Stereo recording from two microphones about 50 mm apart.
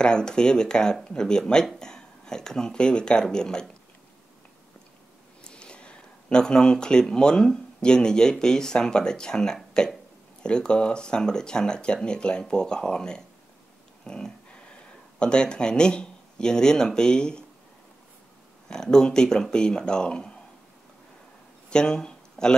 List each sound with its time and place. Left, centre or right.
0.0 s speech: centre
5.4 s speech: centre
18.7 s speech: centre
21.6 s a sound: centre